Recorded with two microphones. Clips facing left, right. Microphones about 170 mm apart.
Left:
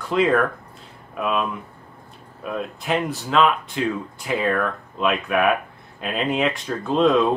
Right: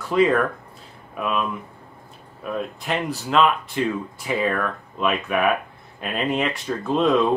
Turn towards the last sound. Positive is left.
turn(degrees=0)  # may be behind; listen again after turning